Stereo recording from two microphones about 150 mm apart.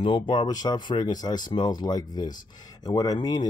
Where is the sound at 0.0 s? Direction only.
35° left (ahead or behind).